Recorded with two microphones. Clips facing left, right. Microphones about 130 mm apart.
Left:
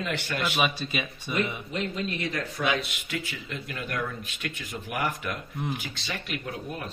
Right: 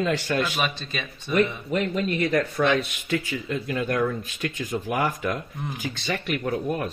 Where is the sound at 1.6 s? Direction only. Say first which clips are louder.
Right 6 dB; 60° right (ahead or behind).